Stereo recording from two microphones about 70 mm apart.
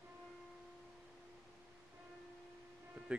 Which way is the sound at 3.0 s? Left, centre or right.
Centre.